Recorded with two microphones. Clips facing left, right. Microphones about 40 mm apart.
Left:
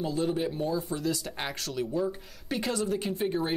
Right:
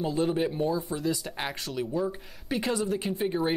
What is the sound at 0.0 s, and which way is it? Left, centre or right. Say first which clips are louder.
Speech: right 2 dB; centre.